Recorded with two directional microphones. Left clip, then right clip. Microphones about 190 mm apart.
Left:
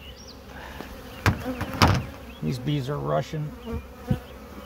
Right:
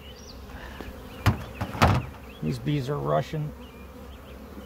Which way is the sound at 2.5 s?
20° left (ahead or behind).